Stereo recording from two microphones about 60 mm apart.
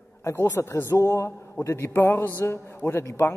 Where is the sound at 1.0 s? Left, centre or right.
Left.